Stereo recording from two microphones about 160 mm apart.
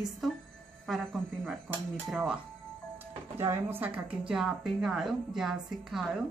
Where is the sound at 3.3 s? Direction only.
15° right (ahead or behind).